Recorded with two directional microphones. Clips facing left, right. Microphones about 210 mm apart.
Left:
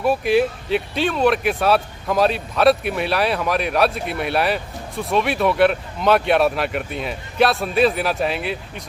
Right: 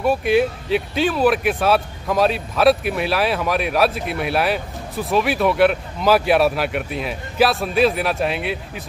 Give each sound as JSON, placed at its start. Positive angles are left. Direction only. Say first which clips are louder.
{"t": 0.0, "sound": "speech", "louder": "even", "side_deg": 0}